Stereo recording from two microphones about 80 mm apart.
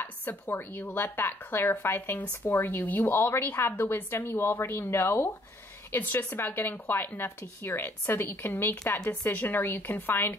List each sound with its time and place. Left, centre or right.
0.0 s a woman's voice: left